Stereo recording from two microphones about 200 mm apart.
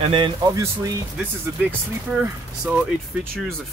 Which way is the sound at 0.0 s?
25° right (ahead or behind).